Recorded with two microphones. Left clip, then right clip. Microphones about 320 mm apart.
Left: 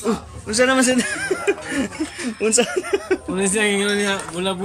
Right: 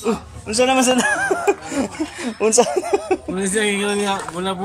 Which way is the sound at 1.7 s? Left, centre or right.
Right.